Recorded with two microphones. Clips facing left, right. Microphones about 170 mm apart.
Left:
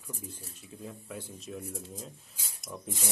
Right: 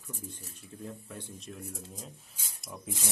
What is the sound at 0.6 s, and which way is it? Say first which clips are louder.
Speech: right 2 dB; 5° left (ahead or behind).